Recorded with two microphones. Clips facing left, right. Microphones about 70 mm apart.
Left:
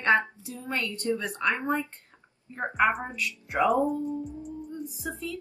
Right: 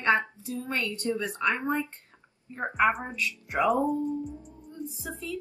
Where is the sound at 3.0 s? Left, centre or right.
Centre.